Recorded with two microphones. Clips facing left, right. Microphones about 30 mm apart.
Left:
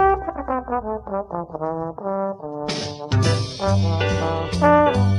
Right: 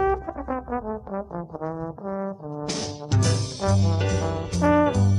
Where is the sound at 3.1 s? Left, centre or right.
Left.